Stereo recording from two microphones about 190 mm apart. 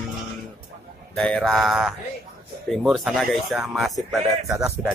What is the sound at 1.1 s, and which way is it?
Speech, 5° left (ahead or behind).